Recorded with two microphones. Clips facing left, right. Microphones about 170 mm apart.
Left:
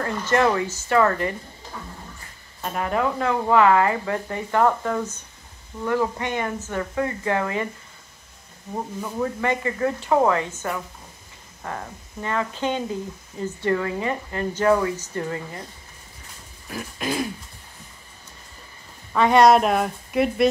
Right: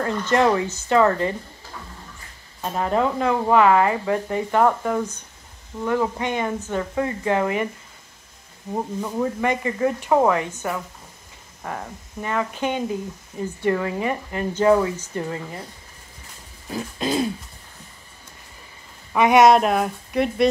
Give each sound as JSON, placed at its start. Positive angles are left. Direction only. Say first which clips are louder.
{"t": 0.0, "sound": "speech", "louder": "right 1 dB", "side_deg": -20}
{"t": 2.8, "sound": "speech", "louder": "right 2 dB", "side_deg": -25}
{"t": 9.0, "sound": "speech", "louder": "right 1 dB", "side_deg": -15}
{"t": 16.7, "sound": "speech", "louder": "right 3 dB", "side_deg": -25}
{"t": 19.1, "sound": "speech", "louder": "right 2 dB", "side_deg": -15}
{"t": 19.4, "sound": "speech", "louder": "right 1 dB", "side_deg": 0}